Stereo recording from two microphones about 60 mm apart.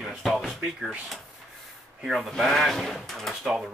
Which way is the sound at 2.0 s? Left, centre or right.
Centre.